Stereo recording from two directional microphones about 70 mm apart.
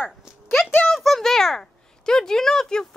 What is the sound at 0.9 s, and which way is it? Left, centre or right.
A child's voice, centre.